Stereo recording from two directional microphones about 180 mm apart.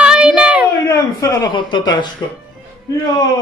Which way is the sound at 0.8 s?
20° left (ahead or behind).